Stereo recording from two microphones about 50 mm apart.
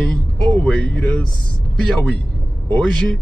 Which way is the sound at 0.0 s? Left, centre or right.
Left.